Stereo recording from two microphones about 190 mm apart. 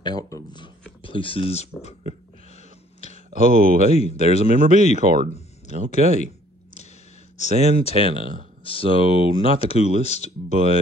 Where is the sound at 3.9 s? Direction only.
35° left (ahead or behind).